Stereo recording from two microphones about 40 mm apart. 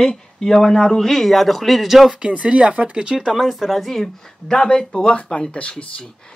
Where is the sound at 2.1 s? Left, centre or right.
Right.